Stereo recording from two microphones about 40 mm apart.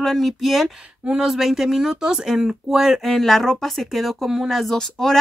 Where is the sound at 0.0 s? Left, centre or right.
Centre.